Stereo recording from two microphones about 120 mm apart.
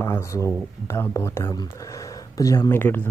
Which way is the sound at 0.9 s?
20° left (ahead or behind).